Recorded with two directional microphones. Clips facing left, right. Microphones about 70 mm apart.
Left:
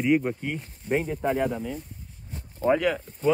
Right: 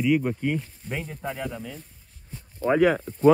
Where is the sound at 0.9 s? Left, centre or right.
Left.